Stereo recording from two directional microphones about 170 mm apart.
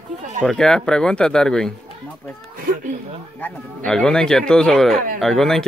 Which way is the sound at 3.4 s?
5° left (ahead or behind).